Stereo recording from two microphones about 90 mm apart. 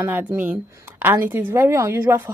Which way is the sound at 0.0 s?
25° right (ahead or behind).